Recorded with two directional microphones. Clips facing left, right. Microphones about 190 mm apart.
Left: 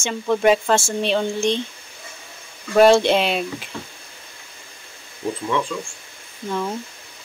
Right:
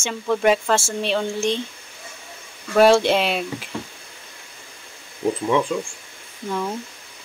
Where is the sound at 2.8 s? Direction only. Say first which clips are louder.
Left 1 dB; 5° right (ahead or behind).